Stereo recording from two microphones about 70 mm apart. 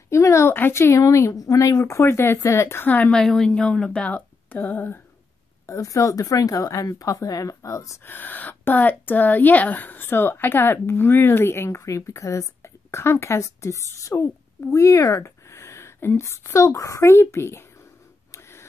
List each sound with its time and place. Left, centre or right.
0.1 s speech: left
1.3 s speech: left
2.0 s speech: left
3.1 s speech: centre
4.1 s speech: left
5.7 s speech: left
8.0 s speech: left
18.3 s a sound: left